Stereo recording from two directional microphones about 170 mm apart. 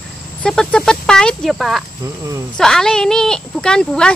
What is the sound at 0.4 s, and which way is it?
Speech, 5° left (ahead or behind).